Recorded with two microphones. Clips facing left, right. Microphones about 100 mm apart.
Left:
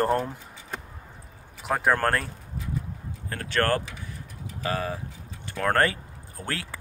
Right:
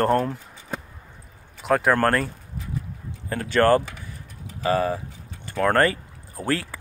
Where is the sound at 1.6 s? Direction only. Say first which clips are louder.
Right 4 dB; 5° left (ahead or behind).